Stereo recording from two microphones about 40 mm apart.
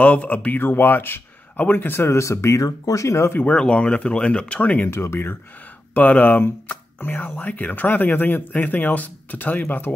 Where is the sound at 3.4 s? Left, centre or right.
Left.